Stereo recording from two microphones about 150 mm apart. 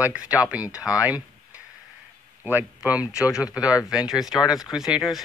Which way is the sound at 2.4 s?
15° right (ahead or behind).